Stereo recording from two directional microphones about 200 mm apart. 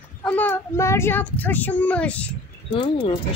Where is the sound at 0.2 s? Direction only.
10° left (ahead or behind).